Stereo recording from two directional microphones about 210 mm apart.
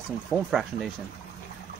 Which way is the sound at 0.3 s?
Centre (ahead or behind).